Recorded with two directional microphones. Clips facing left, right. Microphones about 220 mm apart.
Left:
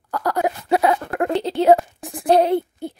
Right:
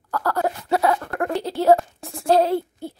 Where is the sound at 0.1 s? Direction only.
15° left (ahead or behind).